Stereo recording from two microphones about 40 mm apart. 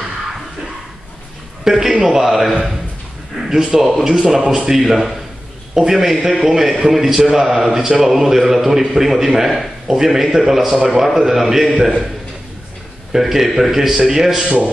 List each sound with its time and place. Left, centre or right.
1.6 s a man's voice: centre
13.1 s a man's voice: centre